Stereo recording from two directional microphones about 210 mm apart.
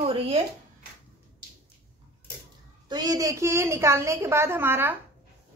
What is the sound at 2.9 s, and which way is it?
A woman's voice, 20° right (ahead or behind).